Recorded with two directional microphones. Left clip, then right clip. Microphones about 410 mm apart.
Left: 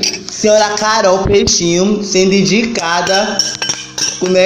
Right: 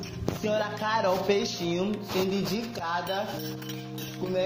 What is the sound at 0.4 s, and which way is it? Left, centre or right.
Music, right.